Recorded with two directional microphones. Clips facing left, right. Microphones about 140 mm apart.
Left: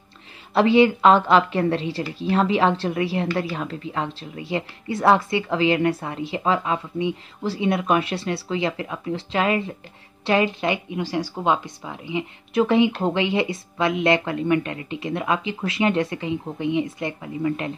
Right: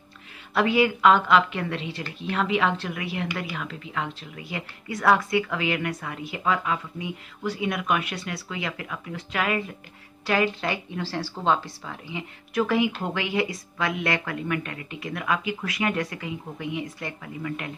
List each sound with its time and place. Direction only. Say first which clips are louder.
0.6 s a woman's voice: left 5 dB; 30° left (ahead or behind)